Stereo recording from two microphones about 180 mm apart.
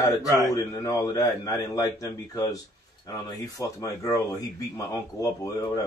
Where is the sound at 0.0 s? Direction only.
20° left (ahead or behind).